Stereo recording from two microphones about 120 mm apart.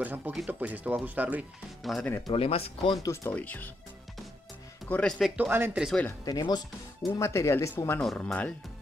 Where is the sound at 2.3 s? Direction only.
55° left (ahead or behind).